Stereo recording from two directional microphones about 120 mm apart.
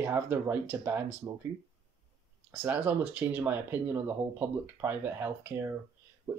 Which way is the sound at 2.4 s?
15° right (ahead or behind).